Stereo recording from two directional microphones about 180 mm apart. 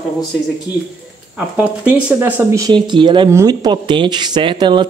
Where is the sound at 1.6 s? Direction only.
10° right (ahead or behind).